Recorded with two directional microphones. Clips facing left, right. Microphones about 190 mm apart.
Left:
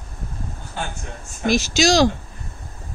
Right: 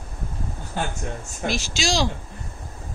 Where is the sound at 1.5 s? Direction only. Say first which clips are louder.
Left 9 dB; 45° left (ahead or behind).